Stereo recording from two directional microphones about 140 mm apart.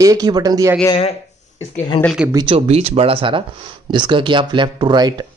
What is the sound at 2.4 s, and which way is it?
Speech, 50° right (ahead or behind).